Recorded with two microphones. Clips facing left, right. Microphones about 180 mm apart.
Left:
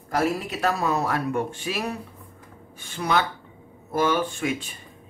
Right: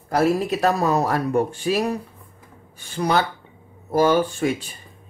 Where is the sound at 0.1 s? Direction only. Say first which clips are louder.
Right 5 dB; 35° right (ahead or behind).